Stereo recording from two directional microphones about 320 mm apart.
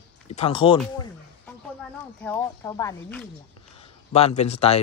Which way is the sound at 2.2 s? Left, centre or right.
Centre.